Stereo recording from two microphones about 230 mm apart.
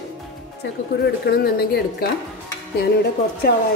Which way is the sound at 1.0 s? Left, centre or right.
Left.